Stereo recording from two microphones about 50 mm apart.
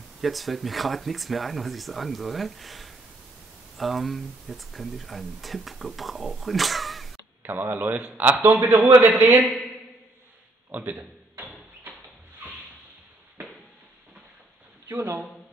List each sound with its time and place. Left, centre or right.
0.2 s speech: centre
7.4 s a man's voice: right
7.9 s a man's voice: right
10.9 s a sound: right
14.9 s a man's voice: right